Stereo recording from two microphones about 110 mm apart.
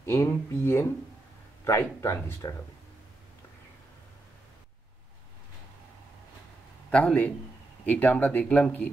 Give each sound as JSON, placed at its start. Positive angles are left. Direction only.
{"t": 0.0, "sound": "speech", "side_deg": 20}
{"t": 6.9, "sound": "speech", "side_deg": 10}